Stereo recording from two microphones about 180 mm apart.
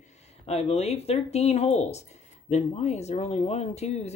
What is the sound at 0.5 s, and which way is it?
Speech, 35° left (ahead or behind).